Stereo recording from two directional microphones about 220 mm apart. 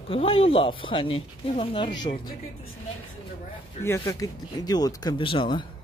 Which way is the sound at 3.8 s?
15° left (ahead or behind).